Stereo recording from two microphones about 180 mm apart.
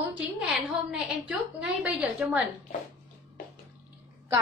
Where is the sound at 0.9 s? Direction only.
5° right (ahead or behind).